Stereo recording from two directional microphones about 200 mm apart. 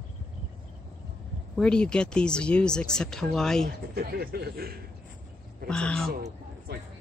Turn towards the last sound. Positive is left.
turn(degrees=-55)  # may be behind; listen again after turning